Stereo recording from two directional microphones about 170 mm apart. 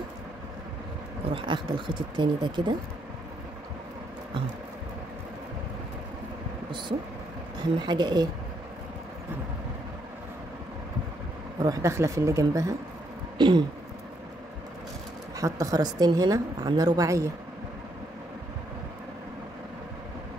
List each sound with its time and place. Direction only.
1.3 s a woman's voice: 30° right (ahead or behind)
7.8 s a woman's voice: 25° right (ahead or behind)
11.6 s speech: 20° right (ahead or behind)
13.4 s a sound: 25° right (ahead or behind)
15.3 s a woman's voice: 20° right (ahead or behind)